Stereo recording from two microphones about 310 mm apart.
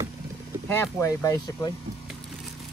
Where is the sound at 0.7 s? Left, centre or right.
Centre.